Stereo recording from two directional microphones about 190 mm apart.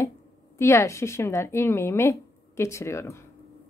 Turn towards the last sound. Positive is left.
turn(degrees=15)  # may be behind; listen again after turning